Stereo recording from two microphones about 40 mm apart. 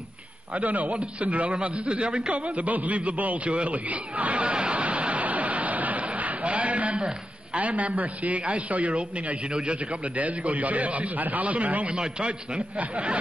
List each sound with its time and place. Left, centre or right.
0.6 s a man's voice: right